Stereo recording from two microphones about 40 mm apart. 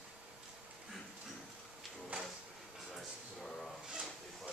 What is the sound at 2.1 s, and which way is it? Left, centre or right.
Drawer open or close, right.